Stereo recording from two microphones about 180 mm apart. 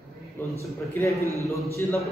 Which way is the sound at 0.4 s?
10° left (ahead or behind).